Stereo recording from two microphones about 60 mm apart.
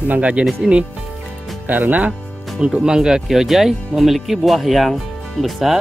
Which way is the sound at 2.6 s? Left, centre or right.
Centre.